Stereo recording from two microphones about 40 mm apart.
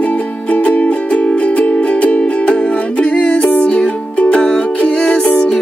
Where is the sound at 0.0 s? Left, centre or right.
Left.